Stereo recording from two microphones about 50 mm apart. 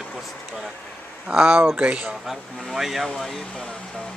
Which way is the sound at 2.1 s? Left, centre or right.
Centre.